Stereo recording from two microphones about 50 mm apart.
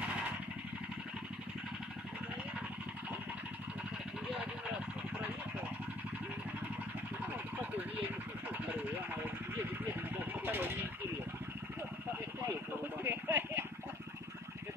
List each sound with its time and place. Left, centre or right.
0.0 s vehicle: right
8.5 s vehicle: right
13.0 s a sound: right